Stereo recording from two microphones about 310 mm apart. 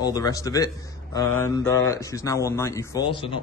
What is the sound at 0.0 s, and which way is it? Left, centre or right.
Speech, centre.